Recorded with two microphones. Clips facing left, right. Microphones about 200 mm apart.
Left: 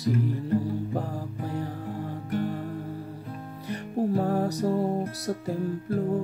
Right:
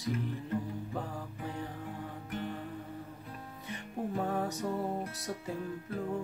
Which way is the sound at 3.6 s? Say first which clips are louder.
Left 10 dB; 35° left (ahead or behind).